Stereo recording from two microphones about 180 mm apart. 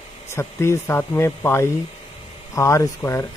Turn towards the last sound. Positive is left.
turn(degrees=15)  # may be behind; listen again after turning